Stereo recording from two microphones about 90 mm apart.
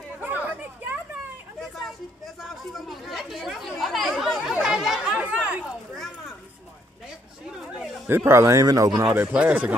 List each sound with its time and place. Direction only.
0.2 s chatter: 20° right (ahead or behind)
2.4 s chatter: centre (ahead or behind); by 5.6 s 15° right (ahead or behind)
7.5 s a sound: 5° right (ahead or behind)
8.3 s speech: 35° right (ahead or behind)
9.1 s speech: 15° right (ahead or behind)